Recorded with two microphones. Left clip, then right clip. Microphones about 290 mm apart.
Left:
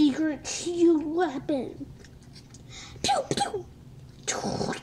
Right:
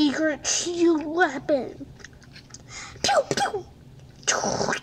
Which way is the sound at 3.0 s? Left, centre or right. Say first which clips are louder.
Right 4 dB; right.